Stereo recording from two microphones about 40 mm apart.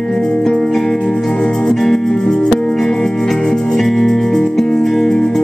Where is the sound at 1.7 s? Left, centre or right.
Centre.